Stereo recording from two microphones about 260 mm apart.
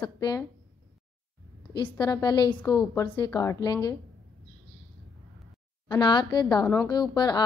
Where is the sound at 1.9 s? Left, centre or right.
Centre.